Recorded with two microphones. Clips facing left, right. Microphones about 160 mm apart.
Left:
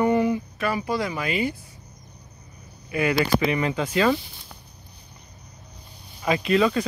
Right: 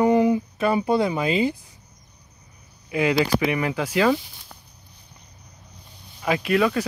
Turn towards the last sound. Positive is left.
turn(degrees=-5)  # may be behind; listen again after turning